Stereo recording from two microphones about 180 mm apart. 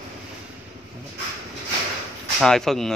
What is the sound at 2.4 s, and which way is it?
Speech, centre (ahead or behind).